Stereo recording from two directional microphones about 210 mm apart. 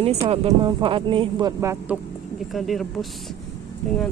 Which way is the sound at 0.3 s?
25° right (ahead or behind).